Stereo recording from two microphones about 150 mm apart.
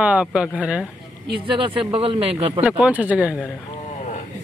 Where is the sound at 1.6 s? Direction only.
35° right (ahead or behind).